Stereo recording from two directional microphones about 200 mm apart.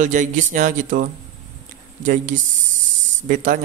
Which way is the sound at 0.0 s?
40° right (ahead or behind).